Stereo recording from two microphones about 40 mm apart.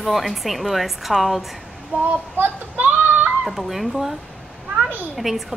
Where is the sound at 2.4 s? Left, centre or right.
Right.